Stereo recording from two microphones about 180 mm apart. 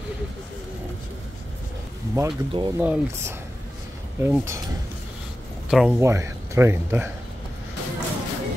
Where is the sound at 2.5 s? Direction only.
25° right (ahead or behind).